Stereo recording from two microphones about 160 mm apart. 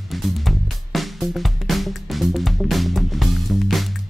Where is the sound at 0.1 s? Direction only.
Centre (ahead or behind).